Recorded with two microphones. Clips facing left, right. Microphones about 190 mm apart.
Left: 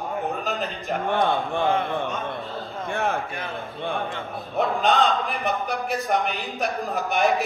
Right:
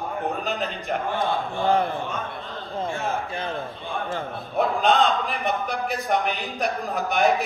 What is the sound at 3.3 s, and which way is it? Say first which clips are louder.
Speech: right 3 dB; 35° right (ahead or behind).